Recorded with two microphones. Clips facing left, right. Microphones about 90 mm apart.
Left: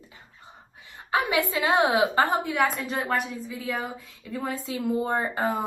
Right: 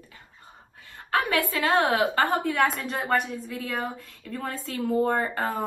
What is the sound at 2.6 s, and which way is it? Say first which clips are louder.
A woman's voice: even; centre (ahead or behind).